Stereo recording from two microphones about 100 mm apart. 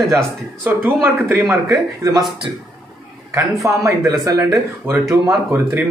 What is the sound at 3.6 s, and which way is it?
Speech, 35° right (ahead or behind).